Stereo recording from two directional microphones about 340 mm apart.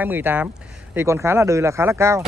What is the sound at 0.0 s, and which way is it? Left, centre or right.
Speech, centre.